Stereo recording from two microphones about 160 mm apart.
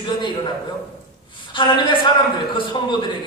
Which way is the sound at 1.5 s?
30° left (ahead or behind).